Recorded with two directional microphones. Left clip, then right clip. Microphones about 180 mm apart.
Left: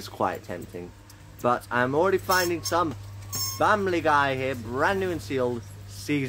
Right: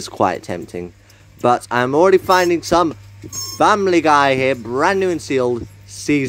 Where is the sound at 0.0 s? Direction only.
40° right (ahead or behind).